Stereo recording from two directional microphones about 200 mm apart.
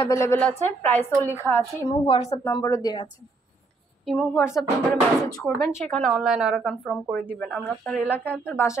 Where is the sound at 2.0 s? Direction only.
30° left (ahead or behind).